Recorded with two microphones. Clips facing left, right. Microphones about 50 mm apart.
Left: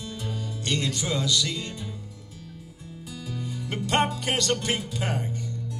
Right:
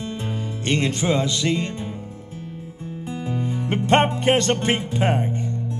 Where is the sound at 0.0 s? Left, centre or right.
Right.